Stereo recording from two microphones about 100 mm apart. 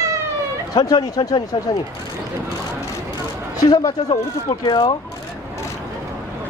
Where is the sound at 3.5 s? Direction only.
35° left (ahead or behind).